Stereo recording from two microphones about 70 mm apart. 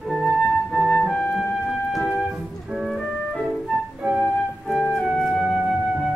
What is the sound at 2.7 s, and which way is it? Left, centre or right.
Organ, centre.